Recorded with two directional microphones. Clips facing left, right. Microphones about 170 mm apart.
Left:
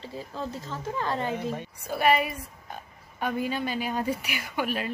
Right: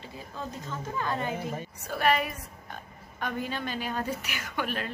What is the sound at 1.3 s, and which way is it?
Speech, centre (ahead or behind).